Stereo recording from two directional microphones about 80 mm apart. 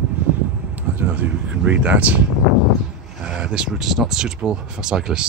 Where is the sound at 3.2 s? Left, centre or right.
Centre.